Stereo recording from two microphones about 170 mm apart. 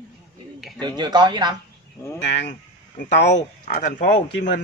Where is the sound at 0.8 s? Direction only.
25° right (ahead or behind).